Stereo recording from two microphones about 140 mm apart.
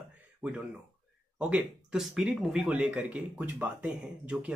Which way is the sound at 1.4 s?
5° right (ahead or behind).